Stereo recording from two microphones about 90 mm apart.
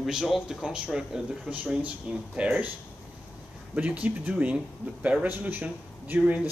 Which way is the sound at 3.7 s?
15° right (ahead or behind).